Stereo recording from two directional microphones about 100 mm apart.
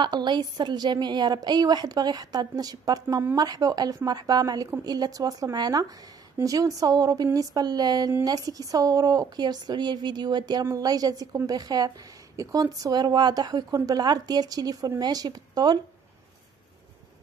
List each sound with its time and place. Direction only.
0.0 s a woman's voice: 50° right (ahead or behind)